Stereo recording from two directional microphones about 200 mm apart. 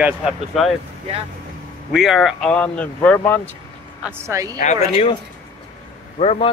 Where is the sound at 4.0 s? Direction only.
10° right (ahead or behind).